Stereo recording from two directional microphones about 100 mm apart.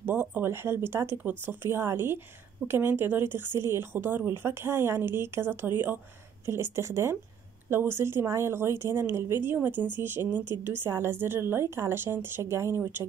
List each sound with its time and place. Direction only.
0.0 s speech: 15° right (ahead or behind)